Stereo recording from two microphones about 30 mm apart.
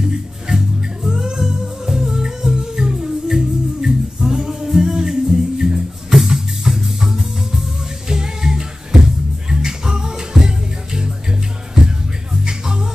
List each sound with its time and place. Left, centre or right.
0.5 s music: centre
8.1 s music: right